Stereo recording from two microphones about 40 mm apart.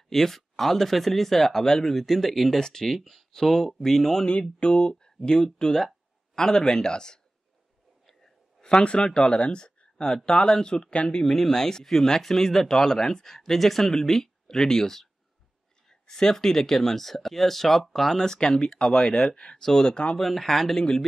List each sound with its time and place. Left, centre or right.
0.1 s speech: centre
3.0 s speech: centre
4.3 s speech: left
8.1 s a sound: centre
8.6 s speech: left
20.2 s speech: centre